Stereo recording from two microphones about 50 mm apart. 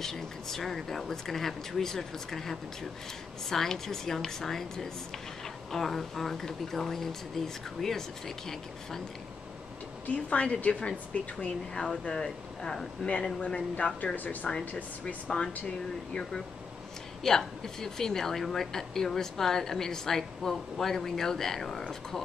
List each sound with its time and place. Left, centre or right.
0.0 s a woman's voice: centre
10.0 s a woman's voice: left
14.1 s speech: left
15.2 s a woman's voice: centre
17.2 s a woman's voice: centre